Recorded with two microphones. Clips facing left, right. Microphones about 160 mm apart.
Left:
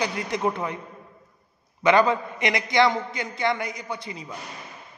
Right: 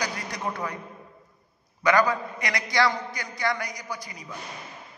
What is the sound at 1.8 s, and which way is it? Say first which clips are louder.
A man's voice: left 3 dB; 25° left (ahead or behind).